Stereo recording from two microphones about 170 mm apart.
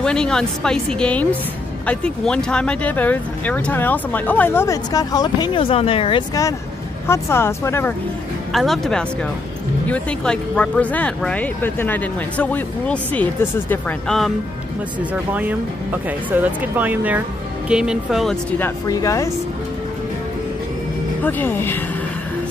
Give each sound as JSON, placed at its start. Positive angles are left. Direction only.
{"t": 0.0, "sound": "speech", "side_deg": 5}
{"t": 7.1, "sound": "speech", "side_deg": 15}
{"t": 8.5, "sound": "speech", "side_deg": 0}
{"t": 15.3, "sound": "speech", "side_deg": -10}
{"t": 18.6, "sound": "speech", "side_deg": 20}
{"t": 21.2, "sound": "speech", "side_deg": 10}